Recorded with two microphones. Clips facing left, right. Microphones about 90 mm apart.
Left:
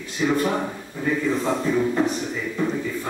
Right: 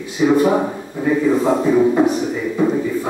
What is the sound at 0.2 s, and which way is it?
Speech, 10° right (ahead or behind).